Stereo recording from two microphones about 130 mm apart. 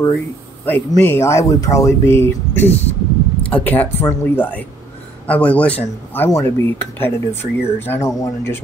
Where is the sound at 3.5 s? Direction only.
15° left (ahead or behind).